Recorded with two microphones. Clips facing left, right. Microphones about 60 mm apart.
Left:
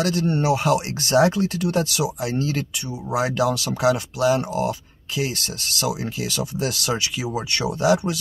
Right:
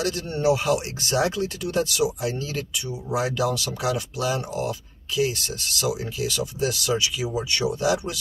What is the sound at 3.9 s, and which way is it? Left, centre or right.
Speech, left.